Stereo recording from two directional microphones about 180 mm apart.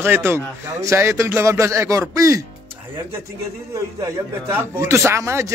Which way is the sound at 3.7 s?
15° right (ahead or behind).